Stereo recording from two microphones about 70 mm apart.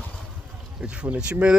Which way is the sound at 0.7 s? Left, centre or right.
Centre.